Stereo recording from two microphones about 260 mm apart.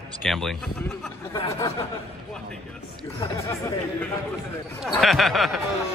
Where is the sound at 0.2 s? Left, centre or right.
Centre.